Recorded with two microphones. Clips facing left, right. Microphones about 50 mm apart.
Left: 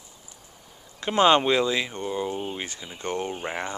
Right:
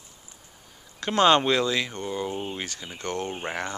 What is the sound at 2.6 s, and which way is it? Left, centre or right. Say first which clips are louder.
Speech: even; centre.